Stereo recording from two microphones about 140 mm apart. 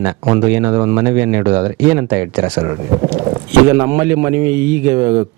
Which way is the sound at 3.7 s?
20° right (ahead or behind).